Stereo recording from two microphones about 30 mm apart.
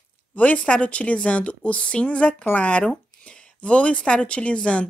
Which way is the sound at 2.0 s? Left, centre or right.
Left.